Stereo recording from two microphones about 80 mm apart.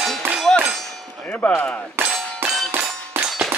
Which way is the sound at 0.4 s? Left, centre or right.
Centre.